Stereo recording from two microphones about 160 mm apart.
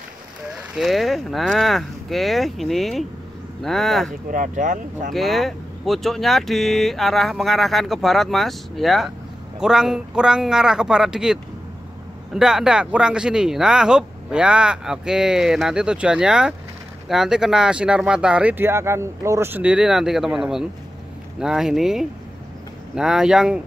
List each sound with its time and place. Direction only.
0.6 s speech: centre (ahead or behind)
4.3 s speech: 55° right (ahead or behind)
5.1 s speech: centre (ahead or behind)
12.4 s speech: 5° right (ahead or behind)